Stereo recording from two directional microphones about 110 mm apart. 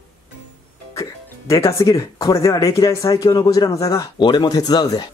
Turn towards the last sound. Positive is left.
turn(degrees=35)  # may be behind; listen again after turning